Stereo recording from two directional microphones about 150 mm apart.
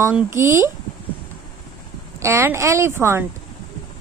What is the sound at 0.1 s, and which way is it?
Speech, 15° right (ahead or behind).